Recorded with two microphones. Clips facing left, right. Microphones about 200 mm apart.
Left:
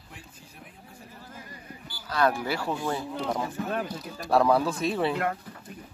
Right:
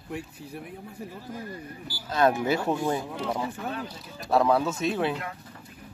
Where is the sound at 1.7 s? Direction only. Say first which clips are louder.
Right 3 dB; 15° left (ahead or behind).